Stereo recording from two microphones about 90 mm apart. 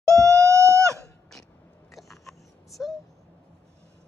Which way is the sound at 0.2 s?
35° right (ahead or behind).